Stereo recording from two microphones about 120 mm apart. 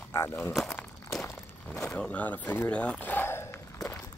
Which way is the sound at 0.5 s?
5° left (ahead or behind).